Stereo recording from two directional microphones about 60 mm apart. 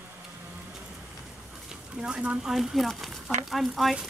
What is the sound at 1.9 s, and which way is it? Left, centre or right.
Speech, centre.